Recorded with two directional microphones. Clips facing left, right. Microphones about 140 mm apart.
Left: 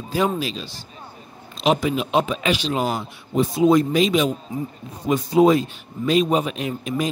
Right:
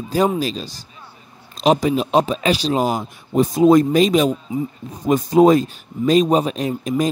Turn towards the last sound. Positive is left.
turn(degrees=-40)  # may be behind; listen again after turning